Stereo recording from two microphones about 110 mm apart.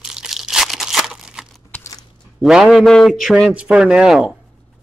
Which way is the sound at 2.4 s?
5° right (ahead or behind).